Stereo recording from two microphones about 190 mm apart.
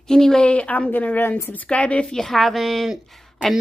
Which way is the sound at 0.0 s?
Centre (ahead or behind).